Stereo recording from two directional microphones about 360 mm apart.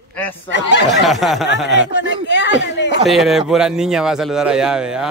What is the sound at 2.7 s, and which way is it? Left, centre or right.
Speech, left.